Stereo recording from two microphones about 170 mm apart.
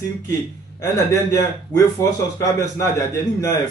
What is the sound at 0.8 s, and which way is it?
Speech, 20° left (ahead or behind).